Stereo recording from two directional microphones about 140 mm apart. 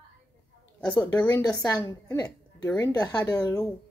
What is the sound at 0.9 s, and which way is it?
A woman's voice, 15° left (ahead or behind).